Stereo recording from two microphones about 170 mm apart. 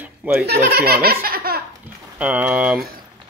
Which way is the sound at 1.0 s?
60° right (ahead or behind).